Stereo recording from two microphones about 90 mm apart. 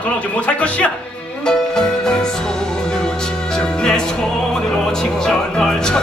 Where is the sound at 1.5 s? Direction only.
5° left (ahead or behind).